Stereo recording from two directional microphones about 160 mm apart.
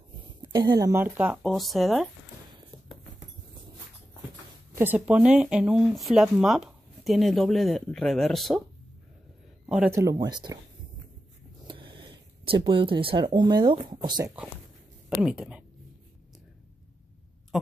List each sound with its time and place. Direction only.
0.4 s speech: 25° right (ahead or behind); by 2.0 s centre (ahead or behind)
4.7 s speech: 10° right (ahead or behind)
9.9 s speech: 25° right (ahead or behind)
11.6 s a sound: 30° right (ahead or behind)
14.0 s speech: 25° right (ahead or behind)
15.0 s speech: 5° right (ahead or behind)